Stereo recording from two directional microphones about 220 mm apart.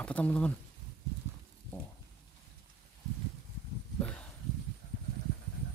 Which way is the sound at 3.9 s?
5° left (ahead or behind).